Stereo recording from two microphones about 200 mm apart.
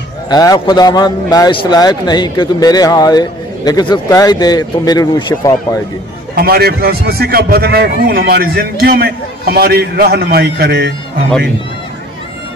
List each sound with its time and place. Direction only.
0.3 s a man's voice: 20° left (ahead or behind)
6.3 s a man's voice: 50° right (ahead or behind)